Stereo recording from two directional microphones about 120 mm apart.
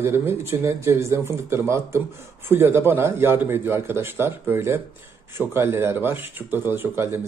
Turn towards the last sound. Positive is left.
turn(degrees=-20)  # may be behind; listen again after turning